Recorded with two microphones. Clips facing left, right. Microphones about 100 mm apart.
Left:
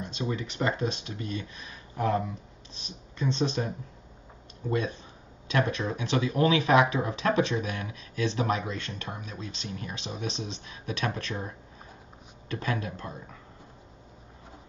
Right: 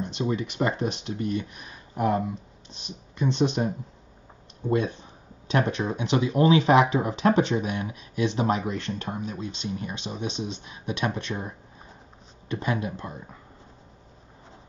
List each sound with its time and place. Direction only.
0.0 s speech: 25° right (ahead or behind)
12.4 s speech: 20° right (ahead or behind)